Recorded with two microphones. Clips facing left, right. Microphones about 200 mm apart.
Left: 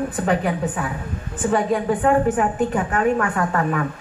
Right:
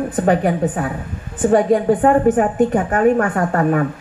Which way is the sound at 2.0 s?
45° right (ahead or behind).